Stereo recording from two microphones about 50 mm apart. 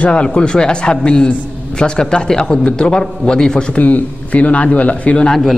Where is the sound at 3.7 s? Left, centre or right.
Left.